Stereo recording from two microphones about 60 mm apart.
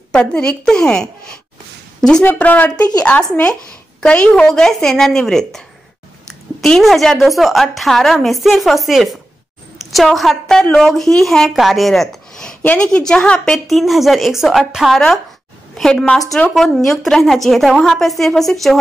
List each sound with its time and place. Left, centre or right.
0.3 s a woman's voice: centre
2.2 s a woman's voice: left
4.5 s a woman's voice: centre
6.6 s a woman's voice: centre
13.7 s a woman's voice: centre
14.9 s a woman's voice: centre